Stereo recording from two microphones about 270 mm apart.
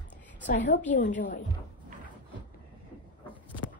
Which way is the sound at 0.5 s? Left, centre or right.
Left.